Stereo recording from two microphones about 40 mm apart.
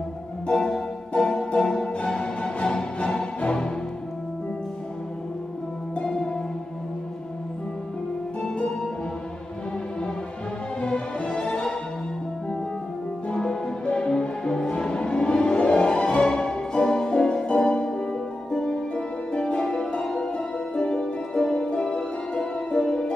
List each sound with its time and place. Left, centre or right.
0.5 s music: left
6.0 s music: centre
10.8 s music: left
13.3 s music: centre